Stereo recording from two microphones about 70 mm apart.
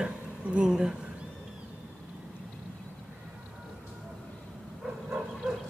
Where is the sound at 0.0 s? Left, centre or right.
Centre.